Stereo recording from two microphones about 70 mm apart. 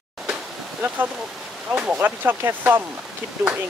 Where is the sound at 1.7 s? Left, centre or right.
Right.